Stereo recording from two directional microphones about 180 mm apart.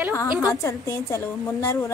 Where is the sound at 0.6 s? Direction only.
15° left (ahead or behind).